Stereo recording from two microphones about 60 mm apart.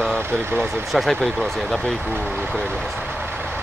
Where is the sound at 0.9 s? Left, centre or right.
Centre.